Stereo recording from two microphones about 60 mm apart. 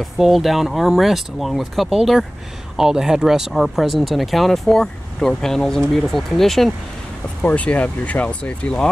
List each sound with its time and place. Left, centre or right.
0.0 s speech: centre
7.4 s speech: left